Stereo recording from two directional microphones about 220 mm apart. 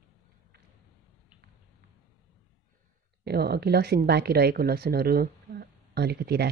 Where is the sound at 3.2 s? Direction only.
45° right (ahead or behind).